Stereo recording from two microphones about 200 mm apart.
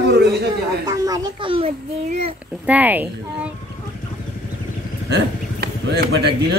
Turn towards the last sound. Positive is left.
turn(degrees=-55)  # may be behind; listen again after turning